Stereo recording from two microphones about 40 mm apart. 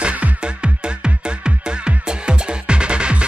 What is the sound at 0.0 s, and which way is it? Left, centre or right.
Music, right.